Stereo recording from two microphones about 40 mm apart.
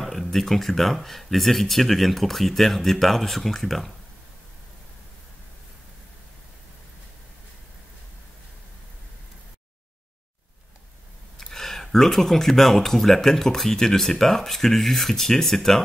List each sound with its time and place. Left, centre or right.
0.0 s speech: centre
11.3 s speech: centre